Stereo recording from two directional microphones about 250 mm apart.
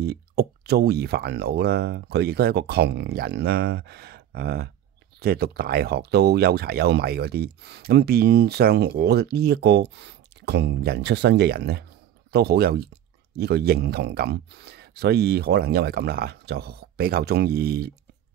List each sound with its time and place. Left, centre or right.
0.0 s speech: right